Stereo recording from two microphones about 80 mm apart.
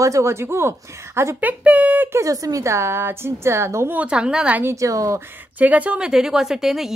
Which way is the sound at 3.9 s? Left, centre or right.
Centre.